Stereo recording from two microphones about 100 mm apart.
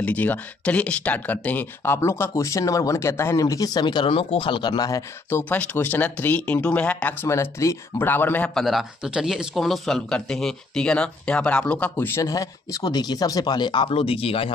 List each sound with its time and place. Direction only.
0.0 s speech: 15° left (ahead or behind); by 5.0 s 40° left (ahead or behind)
5.3 s speech: 15° left (ahead or behind)
7.2 s speech: 30° left (ahead or behind)
8.5 s speech: centre (ahead or behind); by 12.2 s 15° left (ahead or behind)
12.2 s speech: 35° left (ahead or behind); by 13.9 s 50° left (ahead or behind)
13.9 s speech: 70° left (ahead or behind)